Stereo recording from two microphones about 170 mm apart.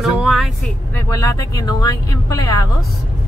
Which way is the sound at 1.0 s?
20° left (ahead or behind).